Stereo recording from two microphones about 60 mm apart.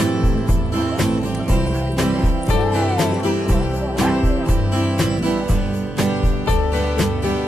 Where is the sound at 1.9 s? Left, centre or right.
Centre.